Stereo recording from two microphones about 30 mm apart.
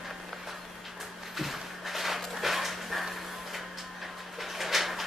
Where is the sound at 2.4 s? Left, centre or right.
Centre.